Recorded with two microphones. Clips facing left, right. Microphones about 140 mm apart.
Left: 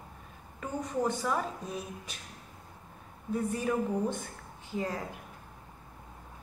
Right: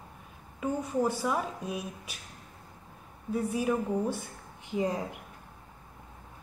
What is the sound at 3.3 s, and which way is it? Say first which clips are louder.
Speech: right 2 dB; 10° right (ahead or behind).